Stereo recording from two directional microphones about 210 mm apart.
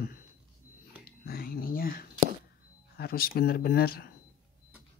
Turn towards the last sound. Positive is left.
turn(degrees=45)  # may be behind; listen again after turning